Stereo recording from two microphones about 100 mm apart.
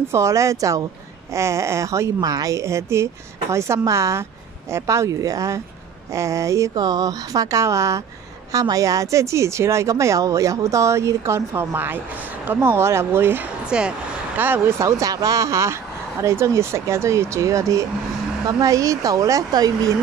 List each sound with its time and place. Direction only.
0.1 s a woman's voice: 30° right (ahead or behind)
6.7 s a woman's voice: 40° right (ahead or behind); by 13.4 s 25° right (ahead or behind)
13.7 s a woman's voice: 10° right (ahead or behind); by 19.9 s 40° right (ahead or behind)